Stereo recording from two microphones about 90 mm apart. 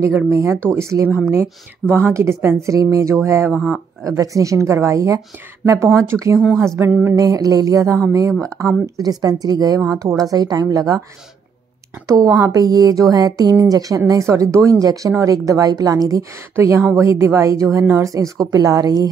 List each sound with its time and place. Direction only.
0.3 s speech: 30° right (ahead or behind)
3.5 s speech: 15° left (ahead or behind)
4.0 s speech: 35° right (ahead or behind)
6.9 s speech: 20° right (ahead or behind)
7.2 s speech: 45° right (ahead or behind)
12.1 s speech: 40° right (ahead or behind)